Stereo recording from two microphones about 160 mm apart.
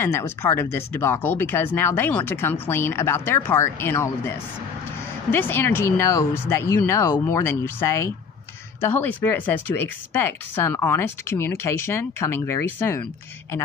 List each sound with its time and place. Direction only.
0.0 s speech: 15° left (ahead or behind)
5.3 s speech: 15° left (ahead or behind)